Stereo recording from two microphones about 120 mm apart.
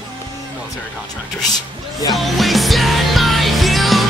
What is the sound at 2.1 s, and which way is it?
Music, centre (ahead or behind).